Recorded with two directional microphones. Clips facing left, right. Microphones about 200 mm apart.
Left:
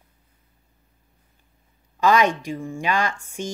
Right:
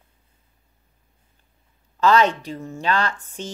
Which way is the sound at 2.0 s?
15° left (ahead or behind).